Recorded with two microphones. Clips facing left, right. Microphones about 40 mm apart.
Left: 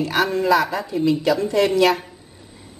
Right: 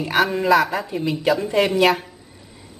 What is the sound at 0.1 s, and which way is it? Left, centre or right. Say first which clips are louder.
Speech: right 2 dB; centre.